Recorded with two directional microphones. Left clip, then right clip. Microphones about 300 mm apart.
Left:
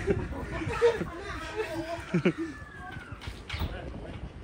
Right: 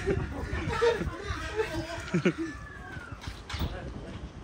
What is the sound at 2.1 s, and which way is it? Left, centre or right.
Speech, centre.